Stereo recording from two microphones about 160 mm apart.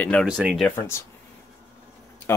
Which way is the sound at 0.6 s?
10° left (ahead or behind).